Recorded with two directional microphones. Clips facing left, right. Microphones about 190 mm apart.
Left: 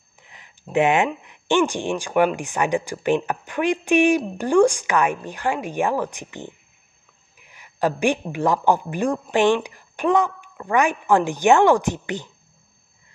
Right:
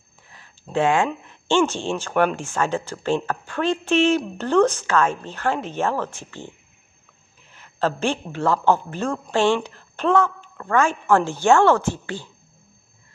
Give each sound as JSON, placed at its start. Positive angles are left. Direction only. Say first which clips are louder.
{"t": 0.3, "sound": "a woman's voice", "louder": "left 3 dB", "side_deg": 20}